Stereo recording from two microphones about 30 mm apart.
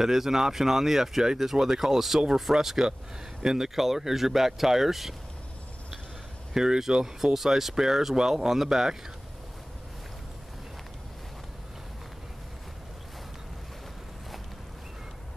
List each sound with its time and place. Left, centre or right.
0.0 s speech: centre
6.5 s speech: centre
7.3 s speech: centre